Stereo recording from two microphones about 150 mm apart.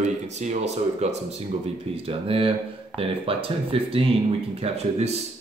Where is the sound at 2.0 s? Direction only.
40° right (ahead or behind).